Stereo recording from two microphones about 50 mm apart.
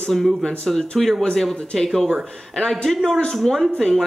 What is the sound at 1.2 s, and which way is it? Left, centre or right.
Speech, centre.